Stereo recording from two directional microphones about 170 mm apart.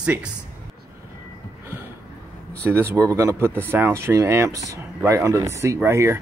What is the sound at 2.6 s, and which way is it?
Speech, 15° right (ahead or behind).